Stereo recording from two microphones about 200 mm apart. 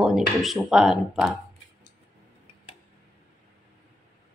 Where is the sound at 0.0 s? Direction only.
Centre (ahead or behind).